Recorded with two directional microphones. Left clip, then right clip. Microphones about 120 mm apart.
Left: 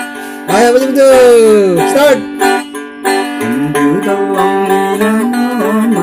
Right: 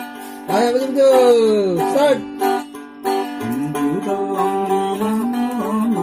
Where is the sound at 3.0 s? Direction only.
15° left (ahead or behind).